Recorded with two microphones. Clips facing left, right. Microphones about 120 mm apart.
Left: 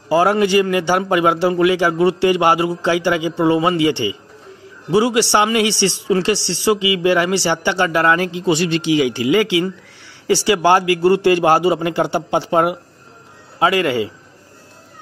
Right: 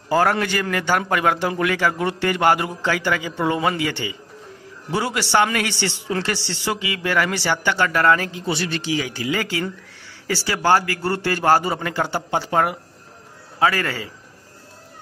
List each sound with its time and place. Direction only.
0.1 s a man's voice: 10° left (ahead or behind)
4.9 s a man's voice: 10° left (ahead or behind)
8.2 s speech: 45° right (ahead or behind)
10.2 s a man's voice: 15° left (ahead or behind)